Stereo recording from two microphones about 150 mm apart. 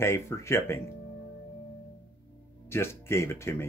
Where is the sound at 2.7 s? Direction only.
15° left (ahead or behind).